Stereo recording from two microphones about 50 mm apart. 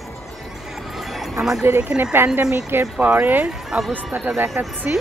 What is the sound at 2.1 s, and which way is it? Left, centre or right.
Speech, right.